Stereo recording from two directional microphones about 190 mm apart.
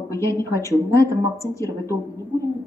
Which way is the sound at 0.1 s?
15° left (ahead or behind).